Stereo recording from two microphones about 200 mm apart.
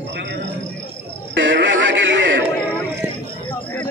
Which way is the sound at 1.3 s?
65° right (ahead or behind).